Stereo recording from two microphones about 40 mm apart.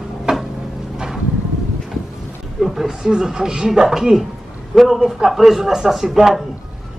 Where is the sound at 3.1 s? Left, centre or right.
Centre.